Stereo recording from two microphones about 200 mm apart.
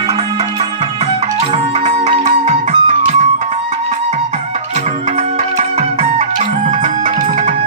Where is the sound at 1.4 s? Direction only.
35° right (ahead or behind).